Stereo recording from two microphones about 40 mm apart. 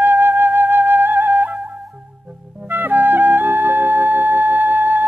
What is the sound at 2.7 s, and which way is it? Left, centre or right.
Music, right.